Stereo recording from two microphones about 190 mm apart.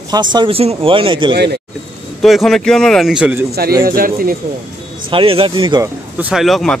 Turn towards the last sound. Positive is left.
turn(degrees=0)  # may be behind; listen again after turning